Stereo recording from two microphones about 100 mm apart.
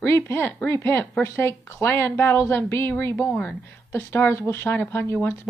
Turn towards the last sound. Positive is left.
turn(degrees=20)  # may be behind; listen again after turning